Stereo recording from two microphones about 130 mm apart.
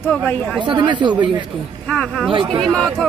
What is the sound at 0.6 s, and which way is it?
Speech, 35° right (ahead or behind).